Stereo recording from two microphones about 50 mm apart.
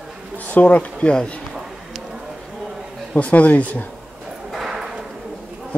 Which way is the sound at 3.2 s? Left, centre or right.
Left.